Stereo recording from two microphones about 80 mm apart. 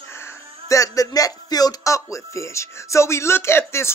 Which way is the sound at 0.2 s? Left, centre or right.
Left.